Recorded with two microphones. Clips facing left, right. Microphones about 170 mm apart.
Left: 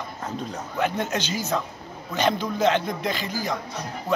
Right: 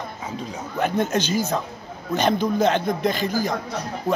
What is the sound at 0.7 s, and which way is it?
A man's voice, 45° right (ahead or behind).